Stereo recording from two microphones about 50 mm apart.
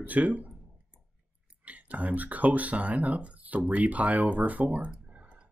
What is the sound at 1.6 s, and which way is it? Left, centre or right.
Speech, right.